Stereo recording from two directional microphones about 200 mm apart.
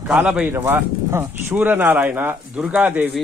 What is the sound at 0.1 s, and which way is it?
Speech, 5° right (ahead or behind).